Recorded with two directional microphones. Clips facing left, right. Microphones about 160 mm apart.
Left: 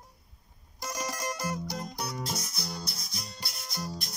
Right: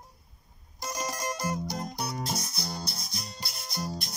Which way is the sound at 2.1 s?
30° right (ahead or behind).